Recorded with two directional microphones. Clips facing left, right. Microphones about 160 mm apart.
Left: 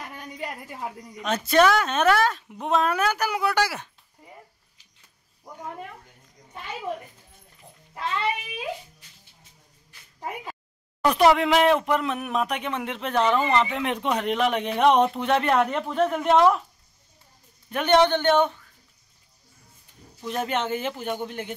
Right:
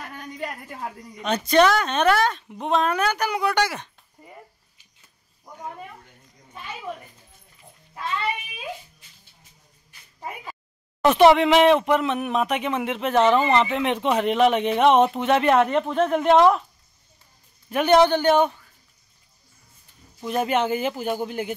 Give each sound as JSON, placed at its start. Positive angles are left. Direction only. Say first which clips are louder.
{"t": 1.1, "sound": "speech", "louder": "right 2 dB", "side_deg": 0}
{"t": 11.0, "sound": "speech", "louder": "right 4 dB", "side_deg": 0}
{"t": 17.6, "sound": "speech", "louder": "right 3 dB", "side_deg": -5}
{"t": 20.2, "sound": "speech", "louder": "right 4 dB", "side_deg": -10}